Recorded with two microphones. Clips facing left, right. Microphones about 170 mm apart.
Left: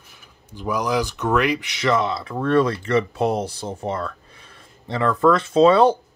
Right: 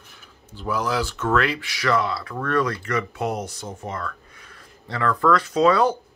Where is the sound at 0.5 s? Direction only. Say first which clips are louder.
Left 2 dB; 15° left (ahead or behind).